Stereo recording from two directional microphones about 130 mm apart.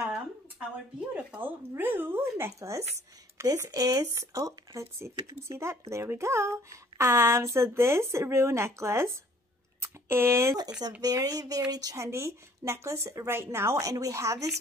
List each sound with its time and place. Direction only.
1.1 s speech: 15° right (ahead or behind)